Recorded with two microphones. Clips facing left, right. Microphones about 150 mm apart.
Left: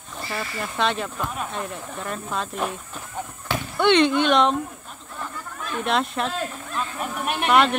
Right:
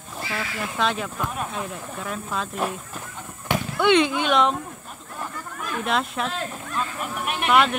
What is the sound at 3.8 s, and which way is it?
Speech, 5° right (ahead or behind).